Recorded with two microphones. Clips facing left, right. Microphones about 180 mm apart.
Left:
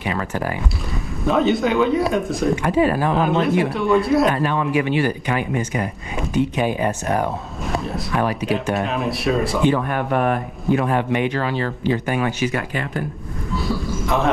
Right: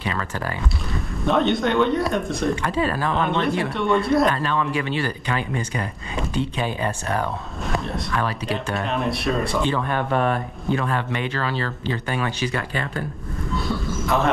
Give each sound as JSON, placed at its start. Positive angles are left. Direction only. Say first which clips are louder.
{"t": 0.0, "sound": "speech", "louder": "left 4 dB", "side_deg": 20}
{"t": 1.2, "sound": "speech", "louder": "left 2 dB", "side_deg": 0}
{"t": 2.5, "sound": "speech", "louder": "left 5 dB", "side_deg": 15}
{"t": 3.2, "sound": "speech", "louder": "left 3 dB", "side_deg": 0}
{"t": 4.3, "sound": "speech", "louder": "left 3 dB", "side_deg": 20}
{"t": 7.7, "sound": "a sound", "louder": "left 2 dB", "side_deg": 0}
{"t": 8.8, "sound": "speech", "louder": "left 2 dB", "side_deg": 0}
{"t": 9.9, "sound": "speech", "louder": "left 2 dB", "side_deg": 15}
{"t": 13.6, "sound": "a sound", "louder": "left 3 dB", "side_deg": 0}